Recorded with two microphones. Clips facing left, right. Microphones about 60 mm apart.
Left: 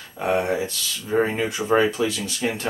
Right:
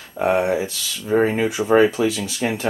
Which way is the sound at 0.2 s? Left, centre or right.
Centre.